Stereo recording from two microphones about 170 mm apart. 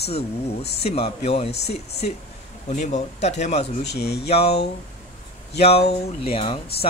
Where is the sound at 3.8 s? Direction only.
80° left.